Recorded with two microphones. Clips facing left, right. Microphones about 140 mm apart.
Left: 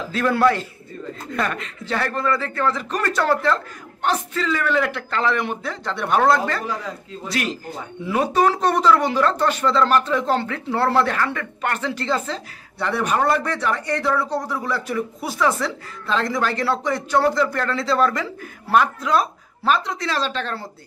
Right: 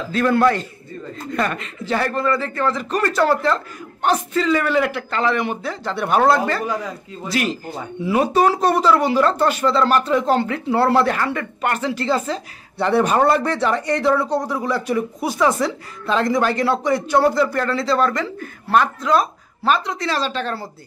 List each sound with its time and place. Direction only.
0.1 s speech: 5° left (ahead or behind)
4.0 s speech: 15° right (ahead or behind)
12.7 s speech: 30° right (ahead or behind); by 20.6 s 5° right (ahead or behind)